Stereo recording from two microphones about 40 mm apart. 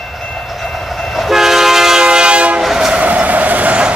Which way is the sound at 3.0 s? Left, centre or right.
Right.